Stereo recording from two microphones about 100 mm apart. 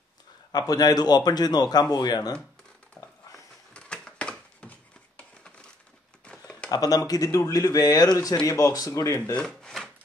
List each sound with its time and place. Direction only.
0.5 s a man's voice: 40° left (ahead or behind)
3.7 s a sound: 10° left (ahead or behind)
6.7 s speech: 40° left (ahead or behind)
9.2 s wood: 10° left (ahead or behind)